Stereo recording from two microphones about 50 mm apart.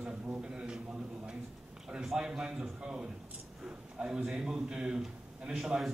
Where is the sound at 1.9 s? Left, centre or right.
Centre.